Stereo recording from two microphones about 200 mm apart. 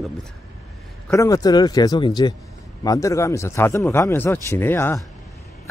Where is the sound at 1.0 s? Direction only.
15° left (ahead or behind).